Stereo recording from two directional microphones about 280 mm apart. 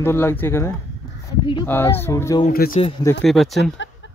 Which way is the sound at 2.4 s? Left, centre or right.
Left.